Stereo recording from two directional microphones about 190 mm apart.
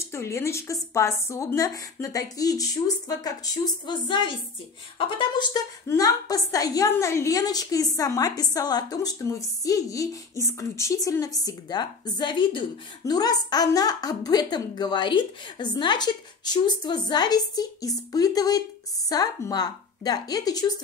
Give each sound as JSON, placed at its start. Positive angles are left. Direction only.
{"t": 0.0, "sound": "a woman's voice", "side_deg": 15}